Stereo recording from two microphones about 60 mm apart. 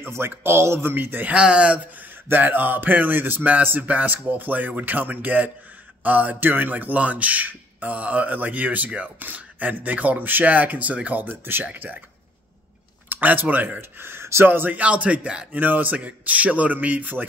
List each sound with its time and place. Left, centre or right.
0.0 s speech: right
1.3 s speech: centre
2.2 s speech: right
11.2 s speech: right
13.1 s speech: right
15.6 s speech: right